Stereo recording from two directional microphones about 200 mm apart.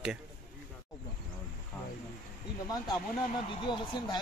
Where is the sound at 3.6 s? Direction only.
25° left (ahead or behind).